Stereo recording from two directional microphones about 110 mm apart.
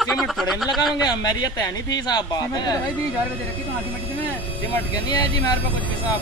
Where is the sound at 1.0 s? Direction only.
35° left (ahead or behind).